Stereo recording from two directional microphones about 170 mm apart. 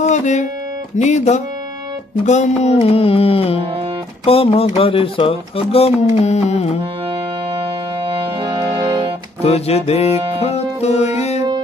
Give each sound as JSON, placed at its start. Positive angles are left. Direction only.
{"t": 0.0, "sound": "music", "side_deg": 45}
{"t": 0.9, "sound": "speech", "side_deg": 45}
{"t": 8.1, "sound": "organ", "side_deg": -30}
{"t": 9.4, "sound": "speech", "side_deg": 40}
{"t": 10.4, "sound": "music", "side_deg": 40}